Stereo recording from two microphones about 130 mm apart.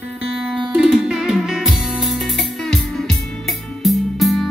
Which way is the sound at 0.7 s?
5° right (ahead or behind).